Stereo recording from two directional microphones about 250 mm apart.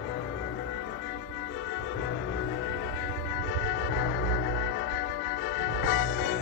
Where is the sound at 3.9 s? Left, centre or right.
Left.